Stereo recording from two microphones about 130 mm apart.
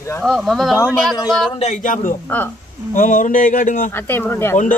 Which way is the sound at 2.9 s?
90° left.